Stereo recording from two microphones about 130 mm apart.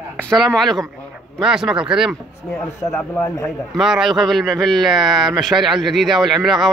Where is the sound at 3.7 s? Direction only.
Centre (ahead or behind).